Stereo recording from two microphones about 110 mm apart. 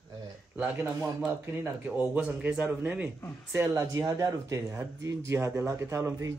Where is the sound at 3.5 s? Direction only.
25° right (ahead or behind).